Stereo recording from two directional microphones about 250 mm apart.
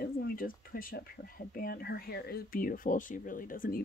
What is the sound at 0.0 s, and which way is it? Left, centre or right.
Speech, left.